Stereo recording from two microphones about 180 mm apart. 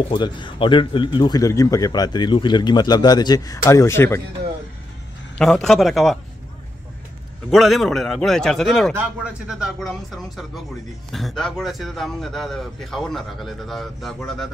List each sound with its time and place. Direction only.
0.1 s speech: 25° left (ahead or behind)
5.4 s a man's voice: 5° left (ahead or behind)
7.5 s a man's voice: centre (ahead or behind)